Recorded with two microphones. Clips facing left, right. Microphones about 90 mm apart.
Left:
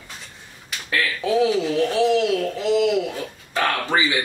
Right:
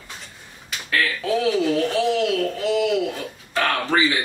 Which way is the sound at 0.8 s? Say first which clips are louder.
Even; 20° left (ahead or behind).